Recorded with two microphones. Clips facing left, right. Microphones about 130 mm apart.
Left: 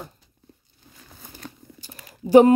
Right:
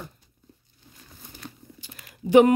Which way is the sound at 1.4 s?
40° left (ahead or behind).